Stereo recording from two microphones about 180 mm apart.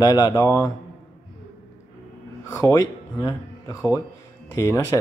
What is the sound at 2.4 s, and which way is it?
Speech, 15° left (ahead or behind).